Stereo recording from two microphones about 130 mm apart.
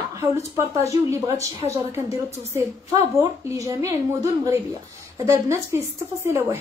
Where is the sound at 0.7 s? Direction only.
20° right (ahead or behind).